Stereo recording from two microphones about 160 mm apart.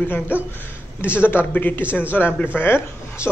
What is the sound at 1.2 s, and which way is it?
A man's voice, 15° left (ahead or behind).